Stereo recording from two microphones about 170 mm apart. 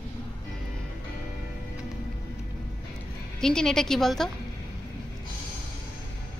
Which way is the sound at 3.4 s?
5° left (ahead or behind).